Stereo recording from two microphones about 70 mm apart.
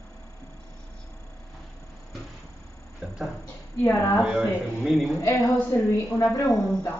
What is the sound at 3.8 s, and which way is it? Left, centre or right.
Speech, left.